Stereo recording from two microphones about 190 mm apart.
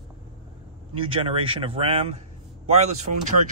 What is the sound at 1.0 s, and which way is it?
Speech, 30° right (ahead or behind).